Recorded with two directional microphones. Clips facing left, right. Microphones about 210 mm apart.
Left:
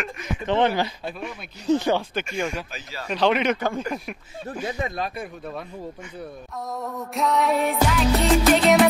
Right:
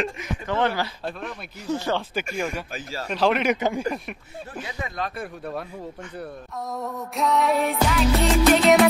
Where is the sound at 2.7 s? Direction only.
40° right (ahead or behind).